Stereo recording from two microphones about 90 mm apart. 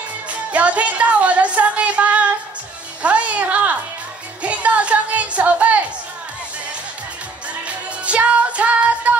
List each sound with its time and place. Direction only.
0.3 s music: 15° right (ahead or behind)
7.6 s music: 15° right (ahead or behind)